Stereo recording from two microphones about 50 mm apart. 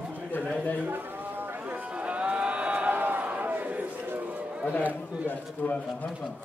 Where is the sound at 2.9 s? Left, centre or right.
Right.